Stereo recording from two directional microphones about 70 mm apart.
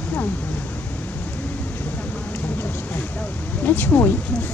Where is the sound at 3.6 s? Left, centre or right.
Left.